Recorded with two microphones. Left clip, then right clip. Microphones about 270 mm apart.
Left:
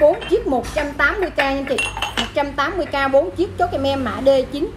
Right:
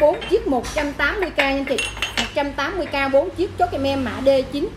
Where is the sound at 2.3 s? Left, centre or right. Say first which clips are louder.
Left 3 dB; centre.